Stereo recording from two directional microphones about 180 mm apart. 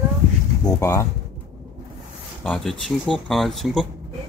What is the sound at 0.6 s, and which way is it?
Speech, 15° left (ahead or behind).